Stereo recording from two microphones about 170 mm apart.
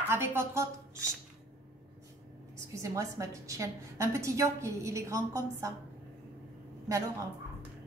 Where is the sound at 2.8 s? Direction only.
20° right (ahead or behind).